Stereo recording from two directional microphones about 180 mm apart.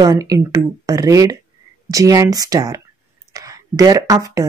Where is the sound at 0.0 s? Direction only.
20° right (ahead or behind).